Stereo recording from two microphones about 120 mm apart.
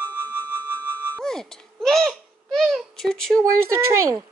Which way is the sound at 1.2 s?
5° left (ahead or behind).